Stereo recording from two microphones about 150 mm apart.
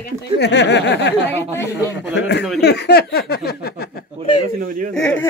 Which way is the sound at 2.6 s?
90° left.